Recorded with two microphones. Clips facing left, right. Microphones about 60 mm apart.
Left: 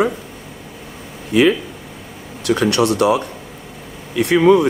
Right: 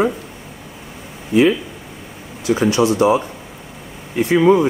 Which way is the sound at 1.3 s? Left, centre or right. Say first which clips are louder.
Even; left.